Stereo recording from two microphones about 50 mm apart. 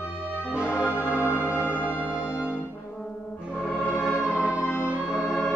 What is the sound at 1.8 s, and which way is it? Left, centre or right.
Music, left.